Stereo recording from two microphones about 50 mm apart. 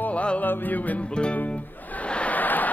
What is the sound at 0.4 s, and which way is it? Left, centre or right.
Music, left.